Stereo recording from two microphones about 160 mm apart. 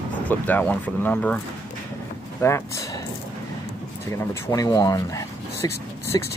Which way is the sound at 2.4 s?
15° left (ahead or behind).